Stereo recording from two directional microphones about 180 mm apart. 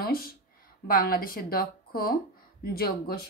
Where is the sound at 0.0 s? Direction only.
55° left (ahead or behind).